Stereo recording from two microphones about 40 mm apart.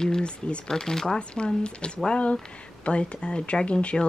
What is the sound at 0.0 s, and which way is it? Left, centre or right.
Speech, left.